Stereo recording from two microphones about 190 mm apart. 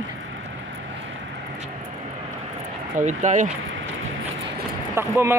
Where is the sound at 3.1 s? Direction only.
40° right (ahead or behind).